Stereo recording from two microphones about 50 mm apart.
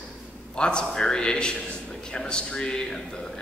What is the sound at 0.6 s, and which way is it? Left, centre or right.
A man's voice, centre.